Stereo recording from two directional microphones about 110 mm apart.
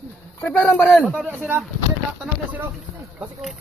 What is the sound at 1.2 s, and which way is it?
Speech, 15° right (ahead or behind).